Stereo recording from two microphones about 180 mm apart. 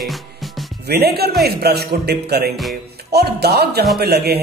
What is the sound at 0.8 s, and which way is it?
Speech, 60° right (ahead or behind).